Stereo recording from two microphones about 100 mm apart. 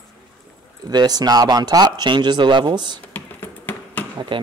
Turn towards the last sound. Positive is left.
turn(degrees=15)  # may be behind; listen again after turning